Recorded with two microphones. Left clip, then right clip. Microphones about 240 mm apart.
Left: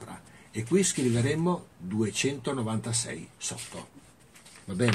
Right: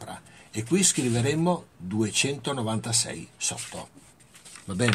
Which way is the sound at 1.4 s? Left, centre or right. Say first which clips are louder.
Right 4 dB; right.